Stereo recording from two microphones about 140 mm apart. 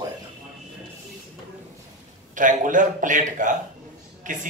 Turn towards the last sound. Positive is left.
turn(degrees=-65)  # may be behind; listen again after turning